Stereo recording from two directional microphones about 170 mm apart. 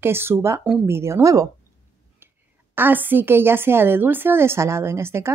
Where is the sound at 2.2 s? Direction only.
15° right (ahead or behind).